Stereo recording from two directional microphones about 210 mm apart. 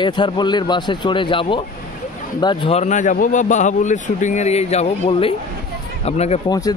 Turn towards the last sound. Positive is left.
turn(degrees=15)  # may be behind; listen again after turning